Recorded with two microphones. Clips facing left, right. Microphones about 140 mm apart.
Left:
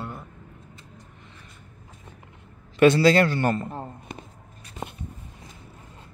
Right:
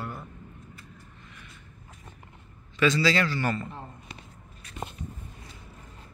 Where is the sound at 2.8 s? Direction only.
55° left (ahead or behind).